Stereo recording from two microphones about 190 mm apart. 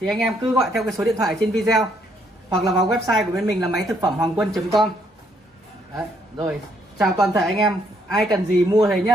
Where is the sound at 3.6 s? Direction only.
20° right (ahead or behind).